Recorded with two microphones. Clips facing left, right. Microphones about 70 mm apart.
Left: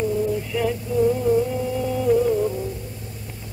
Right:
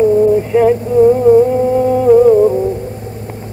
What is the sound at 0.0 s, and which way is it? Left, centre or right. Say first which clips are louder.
Music: right 13 dB; right.